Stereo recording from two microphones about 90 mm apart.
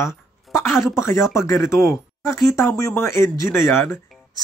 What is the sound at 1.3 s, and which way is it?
Speech, 35° left (ahead or behind).